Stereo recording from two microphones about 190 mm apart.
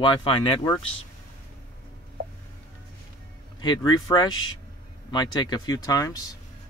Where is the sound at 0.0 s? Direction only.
25° left (ahead or behind).